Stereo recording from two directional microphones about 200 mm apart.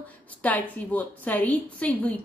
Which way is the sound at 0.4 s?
5° left (ahead or behind).